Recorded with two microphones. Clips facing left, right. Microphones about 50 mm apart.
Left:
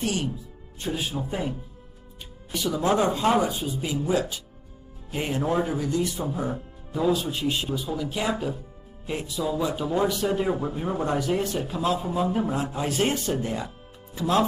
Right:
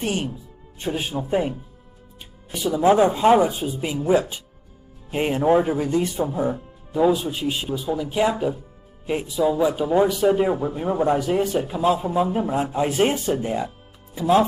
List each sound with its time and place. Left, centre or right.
0.0 s speech: right
1.3 s speech: right
2.5 s a man's voice: centre